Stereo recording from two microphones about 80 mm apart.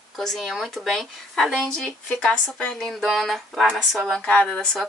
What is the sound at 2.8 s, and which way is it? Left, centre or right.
Speech, centre.